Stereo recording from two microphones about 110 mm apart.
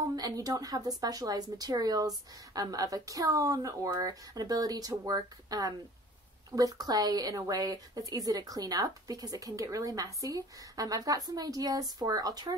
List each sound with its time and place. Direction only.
0.1 s a woman's voice: 35° right (ahead or behind)